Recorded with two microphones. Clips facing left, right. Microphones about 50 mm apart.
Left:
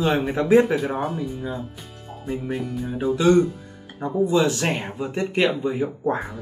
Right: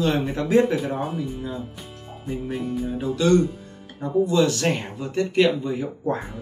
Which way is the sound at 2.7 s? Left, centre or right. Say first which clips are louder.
Right 2 dB; centre.